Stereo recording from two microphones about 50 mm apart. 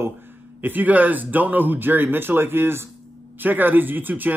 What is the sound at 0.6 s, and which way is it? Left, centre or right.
A man's voice, right.